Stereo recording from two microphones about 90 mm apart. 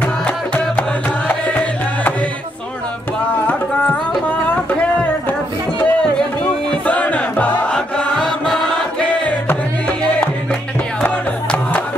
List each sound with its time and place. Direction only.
1.5 s music: 15° left (ahead or behind)
3.4 s tabla: 20° left (ahead or behind)
5.8 s music: 10° left (ahead or behind)